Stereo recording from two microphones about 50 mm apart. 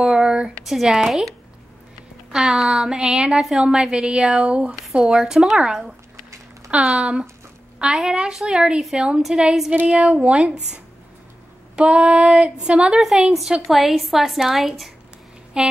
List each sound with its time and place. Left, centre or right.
0.0 s a sound: centre
0.7 s a woman's voice: centre
2.3 s a woman's voice: centre
6.7 s speech: right
7.0 s a woman's voice: centre
9.8 s female singing: right
11.7 s female singing: right
13.0 s a woman's voice: centre
15.5 s a woman's voice: centre